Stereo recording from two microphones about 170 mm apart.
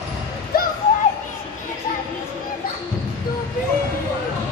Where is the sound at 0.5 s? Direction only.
65° left (ahead or behind).